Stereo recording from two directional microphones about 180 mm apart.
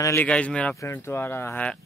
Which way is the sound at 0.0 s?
10° left (ahead or behind).